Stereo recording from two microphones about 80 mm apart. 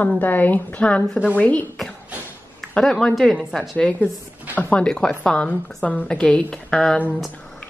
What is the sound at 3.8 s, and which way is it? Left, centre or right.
A woman's voice, centre.